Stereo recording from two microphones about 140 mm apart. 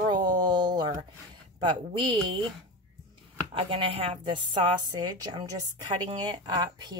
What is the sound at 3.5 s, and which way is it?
A woman's voice, 40° right (ahead or behind).